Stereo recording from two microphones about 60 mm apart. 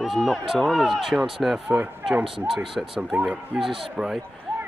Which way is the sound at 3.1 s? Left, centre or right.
Right.